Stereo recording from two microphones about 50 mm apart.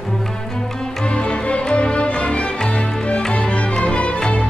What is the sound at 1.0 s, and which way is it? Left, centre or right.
Music, left.